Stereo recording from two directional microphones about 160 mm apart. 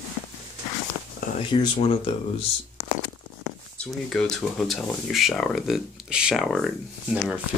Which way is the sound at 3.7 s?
5° left (ahead or behind).